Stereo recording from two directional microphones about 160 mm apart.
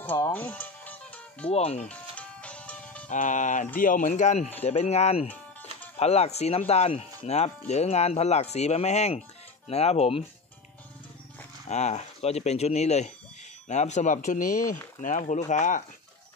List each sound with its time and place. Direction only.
0.0 s music: 10° left (ahead or behind)
1.5 s speech: 40° left (ahead or behind)
1.9 s music: 10° left (ahead or behind)
3.1 s speech: 50° left (ahead or behind)
11.6 s speech: 45° left (ahead or behind)